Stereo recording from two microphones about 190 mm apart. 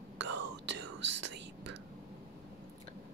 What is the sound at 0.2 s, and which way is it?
Whispering, 70° right (ahead or behind).